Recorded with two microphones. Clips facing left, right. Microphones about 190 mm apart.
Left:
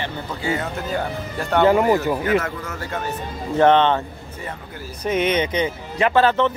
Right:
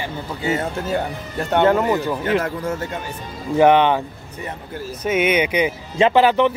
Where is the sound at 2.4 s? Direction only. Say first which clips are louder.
Right 4 dB; 30° right (ahead or behind).